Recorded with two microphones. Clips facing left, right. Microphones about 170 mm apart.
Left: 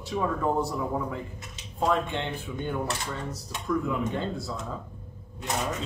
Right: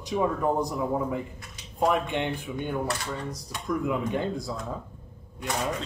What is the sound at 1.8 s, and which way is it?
Speech, 15° right (ahead or behind).